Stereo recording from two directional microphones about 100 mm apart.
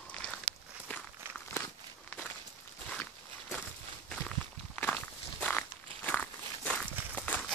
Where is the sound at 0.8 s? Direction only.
15° left (ahead or behind).